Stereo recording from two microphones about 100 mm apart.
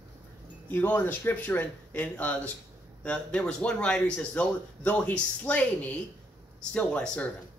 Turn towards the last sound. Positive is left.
turn(degrees=10)  # may be behind; listen again after turning